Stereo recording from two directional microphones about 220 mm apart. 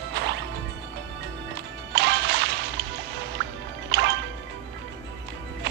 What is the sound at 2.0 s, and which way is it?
Music, 50° right (ahead or behind).